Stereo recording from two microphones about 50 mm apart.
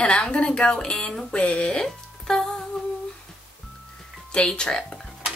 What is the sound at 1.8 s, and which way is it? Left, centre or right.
Music, centre.